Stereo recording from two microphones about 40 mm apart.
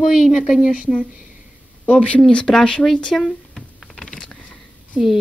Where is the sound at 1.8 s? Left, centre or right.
Left.